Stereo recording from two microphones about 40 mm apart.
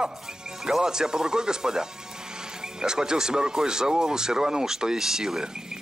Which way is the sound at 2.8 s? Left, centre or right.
Centre.